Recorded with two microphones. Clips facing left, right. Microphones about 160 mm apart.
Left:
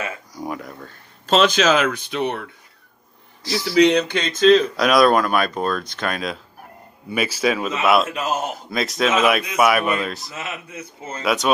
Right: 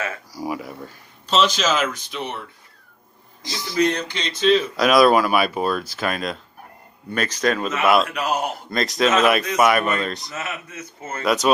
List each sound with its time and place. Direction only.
0.3 s speech: 5° right (ahead or behind)
1.3 s speech: 55° left (ahead or behind)
3.4 s speech: 20° right (ahead or behind)
3.7 s speech: 70° left (ahead or behind); by 4.6 s 45° left (ahead or behind)
4.7 s a man's voice: centre (ahead or behind)
8.1 s a man's voice: 25° left (ahead or behind)
8.6 s speech: centre (ahead or behind)
10.3 s a man's voice: 15° left (ahead or behind)
11.2 s speech: centre (ahead or behind)